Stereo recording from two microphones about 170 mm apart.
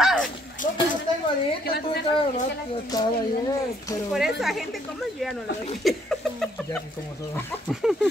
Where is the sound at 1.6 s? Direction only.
70° left (ahead or behind).